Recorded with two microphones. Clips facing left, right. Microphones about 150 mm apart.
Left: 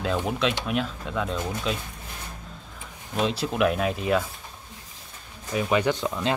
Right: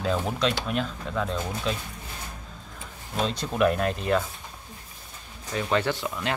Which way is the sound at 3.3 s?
5° left (ahead or behind).